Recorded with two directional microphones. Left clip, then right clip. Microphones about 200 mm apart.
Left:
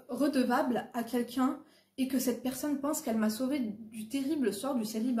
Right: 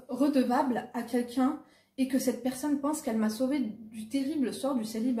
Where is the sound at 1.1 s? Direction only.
15° left (ahead or behind).